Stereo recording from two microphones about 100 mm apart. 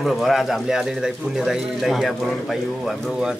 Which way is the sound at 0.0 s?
Centre (ahead or behind).